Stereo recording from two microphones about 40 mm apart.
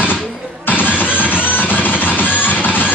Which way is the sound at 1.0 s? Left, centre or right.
Left.